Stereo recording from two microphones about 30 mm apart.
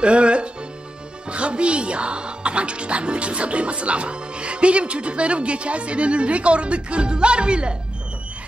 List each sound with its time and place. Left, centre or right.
0.0 s speech: right